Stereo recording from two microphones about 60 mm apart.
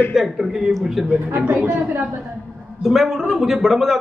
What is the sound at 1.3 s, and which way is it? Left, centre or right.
Speech, right.